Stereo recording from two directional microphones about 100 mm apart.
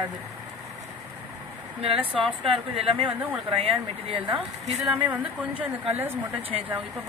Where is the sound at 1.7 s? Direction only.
70° right (ahead or behind).